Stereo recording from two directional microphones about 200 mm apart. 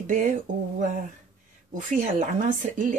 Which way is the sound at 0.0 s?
40° right (ahead or behind).